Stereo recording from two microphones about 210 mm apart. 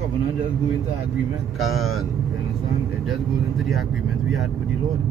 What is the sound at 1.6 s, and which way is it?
Speech, centre (ahead or behind).